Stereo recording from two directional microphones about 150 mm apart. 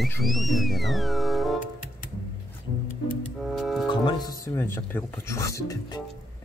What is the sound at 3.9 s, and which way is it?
Speech, 30° left (ahead or behind).